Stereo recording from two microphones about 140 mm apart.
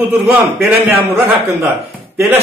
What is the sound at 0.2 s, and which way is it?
A man's voice, 10° right (ahead or behind).